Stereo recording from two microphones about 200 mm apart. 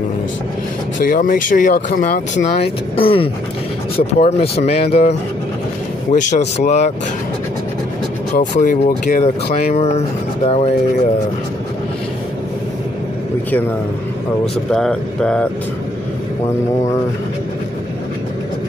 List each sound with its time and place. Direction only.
0.9 s speech: 45° left (ahead or behind)
2.6 s speech: 25° left (ahead or behind)
6.1 s speech: 40° left (ahead or behind)
8.4 s speech: 40° left (ahead or behind)
14.4 s speech: centre (ahead or behind)